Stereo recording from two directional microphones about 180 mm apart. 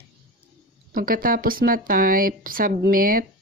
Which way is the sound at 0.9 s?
50° right (ahead or behind).